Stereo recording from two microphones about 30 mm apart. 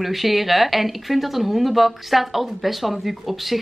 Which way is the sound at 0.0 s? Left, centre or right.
Centre.